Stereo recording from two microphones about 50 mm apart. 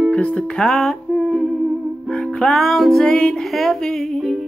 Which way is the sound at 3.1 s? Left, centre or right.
Centre.